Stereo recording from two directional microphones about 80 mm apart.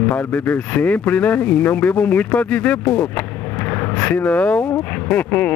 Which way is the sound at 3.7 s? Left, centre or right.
Left.